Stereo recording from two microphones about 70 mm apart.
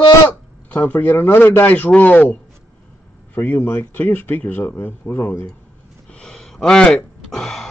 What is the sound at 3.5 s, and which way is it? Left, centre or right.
Speech, left.